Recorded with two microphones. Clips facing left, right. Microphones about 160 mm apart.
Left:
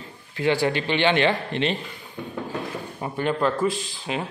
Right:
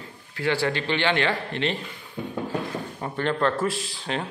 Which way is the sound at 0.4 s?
20° left (ahead or behind).